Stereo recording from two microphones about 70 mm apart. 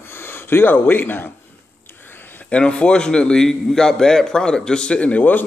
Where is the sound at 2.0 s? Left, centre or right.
Left.